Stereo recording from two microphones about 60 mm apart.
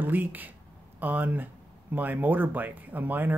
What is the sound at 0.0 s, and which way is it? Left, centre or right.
Speech, right.